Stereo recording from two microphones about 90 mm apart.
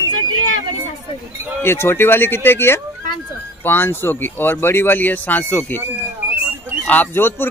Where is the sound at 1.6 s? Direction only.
25° left (ahead or behind).